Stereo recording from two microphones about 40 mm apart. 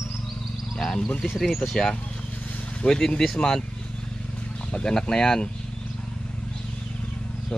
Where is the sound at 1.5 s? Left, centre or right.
Centre.